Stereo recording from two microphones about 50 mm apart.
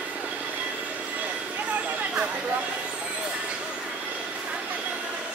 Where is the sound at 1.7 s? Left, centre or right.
Right.